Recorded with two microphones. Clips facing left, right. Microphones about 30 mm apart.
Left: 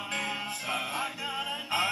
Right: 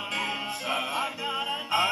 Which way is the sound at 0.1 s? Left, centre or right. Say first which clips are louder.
Right 2 dB; centre.